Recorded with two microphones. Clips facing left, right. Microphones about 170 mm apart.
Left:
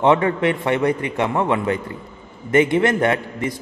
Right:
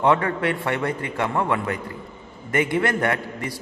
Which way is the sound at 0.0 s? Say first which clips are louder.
Left 4 dB; 20° left (ahead or behind).